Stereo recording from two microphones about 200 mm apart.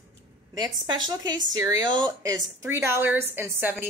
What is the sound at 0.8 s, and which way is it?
A woman's voice, 20° right (ahead or behind).